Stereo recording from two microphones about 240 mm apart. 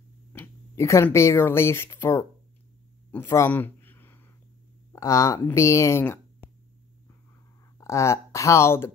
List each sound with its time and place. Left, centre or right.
0.3 s speech: centre
3.1 s a sound: centre
4.9 s speech: centre
7.8 s speech: centre